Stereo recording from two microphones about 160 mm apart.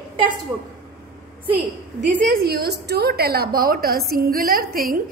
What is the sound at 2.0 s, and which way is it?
A woman's voice, 60° right (ahead or behind).